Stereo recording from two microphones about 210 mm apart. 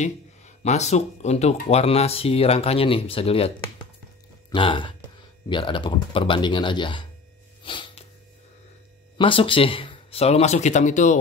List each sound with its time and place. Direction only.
0.0 s speech: 35° left (ahead or behind)
7.6 s sneeze: 25° left (ahead or behind)
9.2 s speech: 25° left (ahead or behind)